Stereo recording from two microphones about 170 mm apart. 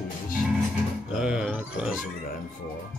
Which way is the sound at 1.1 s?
5° right (ahead or behind).